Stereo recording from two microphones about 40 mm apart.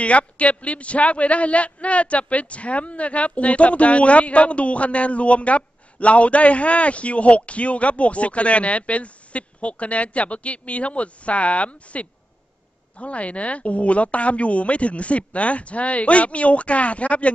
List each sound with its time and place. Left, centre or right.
0.0 s a man's voice: left